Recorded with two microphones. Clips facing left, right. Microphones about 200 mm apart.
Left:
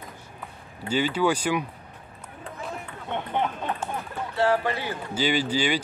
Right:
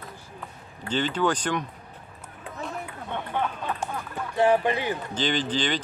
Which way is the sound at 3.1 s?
20° left (ahead or behind).